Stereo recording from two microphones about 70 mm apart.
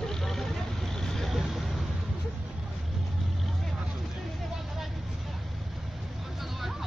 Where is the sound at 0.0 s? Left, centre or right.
Centre.